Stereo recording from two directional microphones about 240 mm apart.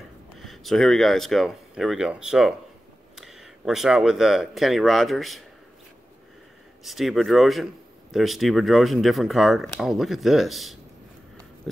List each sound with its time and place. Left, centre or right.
0.4 s speech: centre
6.8 s speech: centre
11.7 s a sound: centre